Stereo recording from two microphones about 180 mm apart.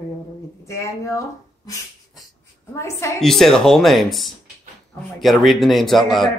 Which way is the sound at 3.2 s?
Centre (ahead or behind).